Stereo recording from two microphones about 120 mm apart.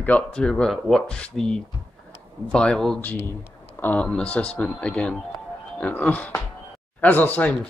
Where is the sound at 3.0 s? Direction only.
15° left (ahead or behind).